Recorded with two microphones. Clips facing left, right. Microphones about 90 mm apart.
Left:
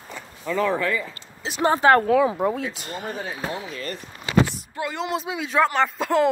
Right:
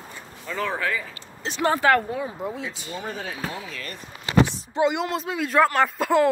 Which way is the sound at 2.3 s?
55° left (ahead or behind).